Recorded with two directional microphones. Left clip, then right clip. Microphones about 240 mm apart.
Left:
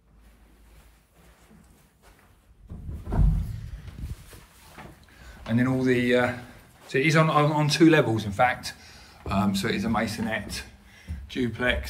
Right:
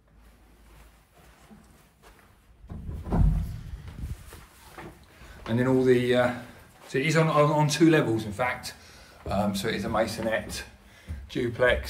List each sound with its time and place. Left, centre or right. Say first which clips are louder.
5.5 s a man's voice: right 2 dB; centre